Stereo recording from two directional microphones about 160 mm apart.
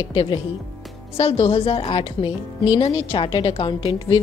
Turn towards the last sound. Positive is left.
turn(degrees=30)  # may be behind; listen again after turning